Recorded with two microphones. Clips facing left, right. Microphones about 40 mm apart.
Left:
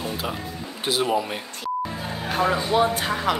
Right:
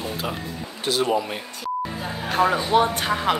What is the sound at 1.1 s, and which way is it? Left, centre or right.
Speech, centre.